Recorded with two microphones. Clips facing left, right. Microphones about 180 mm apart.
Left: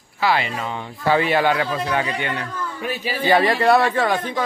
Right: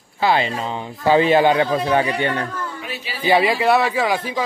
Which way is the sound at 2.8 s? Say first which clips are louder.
Left 6 dB; 50° left (ahead or behind).